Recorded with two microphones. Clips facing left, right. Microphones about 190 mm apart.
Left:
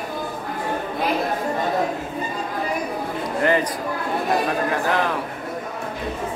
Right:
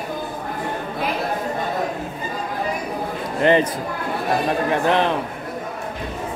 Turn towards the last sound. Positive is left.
turn(degrees=-25)  # may be behind; listen again after turning